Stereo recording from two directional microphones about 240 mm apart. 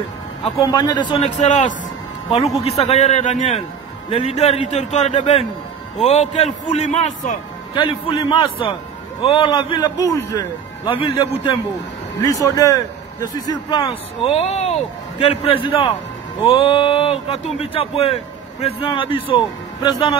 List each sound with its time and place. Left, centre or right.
0.4 s a man's voice: centre
1.2 s a man's voice: left
12.4 s a man's voice: centre